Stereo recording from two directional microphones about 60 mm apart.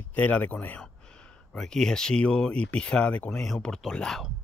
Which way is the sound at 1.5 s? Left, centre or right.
Centre.